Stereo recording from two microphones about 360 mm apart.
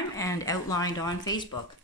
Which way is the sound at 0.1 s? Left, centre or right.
Centre.